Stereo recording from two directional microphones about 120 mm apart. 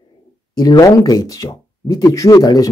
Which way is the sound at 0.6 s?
30° left (ahead or behind).